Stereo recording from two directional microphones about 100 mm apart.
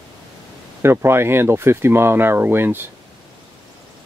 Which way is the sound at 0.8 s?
25° right (ahead or behind).